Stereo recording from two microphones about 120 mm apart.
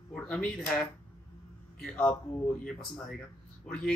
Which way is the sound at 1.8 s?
5° left (ahead or behind).